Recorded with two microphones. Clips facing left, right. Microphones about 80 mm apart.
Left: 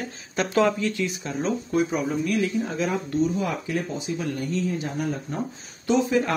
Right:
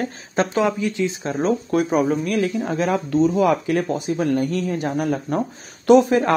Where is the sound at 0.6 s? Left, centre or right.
Centre.